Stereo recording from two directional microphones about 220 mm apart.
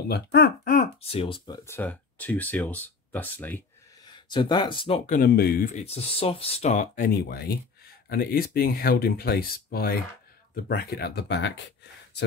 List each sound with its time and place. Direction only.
0.1 s speech: 45° left (ahead or behind)
1.1 s speech: 20° left (ahead or behind)
1.8 s speech: 5° left (ahead or behind); by 5.7 s 45° left (ahead or behind)
5.8 s speech: 30° left (ahead or behind)
7.2 s speech: 45° left (ahead or behind)